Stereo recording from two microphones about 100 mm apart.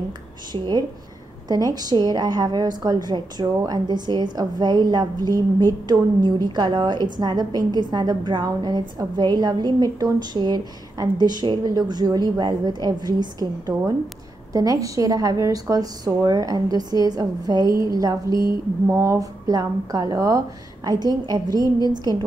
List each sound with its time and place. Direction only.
0.5 s a woman's voice: 45° right (ahead or behind)